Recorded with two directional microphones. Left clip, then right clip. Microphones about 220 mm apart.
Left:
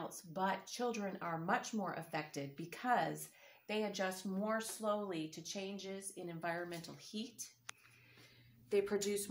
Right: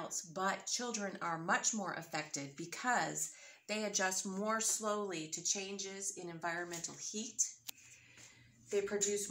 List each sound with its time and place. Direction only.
0.1 s speech: 15° left (ahead or behind); by 7.4 s 40° left (ahead or behind)
8.6 s speech: 55° left (ahead or behind)